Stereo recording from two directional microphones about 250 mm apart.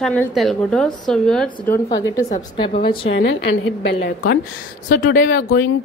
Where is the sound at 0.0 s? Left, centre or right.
Centre.